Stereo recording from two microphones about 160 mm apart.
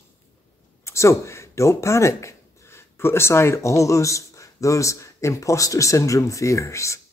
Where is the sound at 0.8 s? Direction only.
20° left (ahead or behind).